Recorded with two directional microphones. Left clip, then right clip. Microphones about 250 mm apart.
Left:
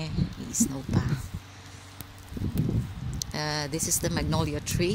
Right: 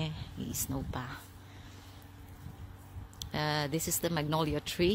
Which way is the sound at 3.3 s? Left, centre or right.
Centre.